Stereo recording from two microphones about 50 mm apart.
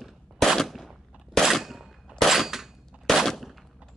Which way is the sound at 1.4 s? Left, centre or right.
Centre.